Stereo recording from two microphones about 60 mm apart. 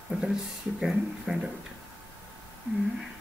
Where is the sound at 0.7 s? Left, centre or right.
Centre.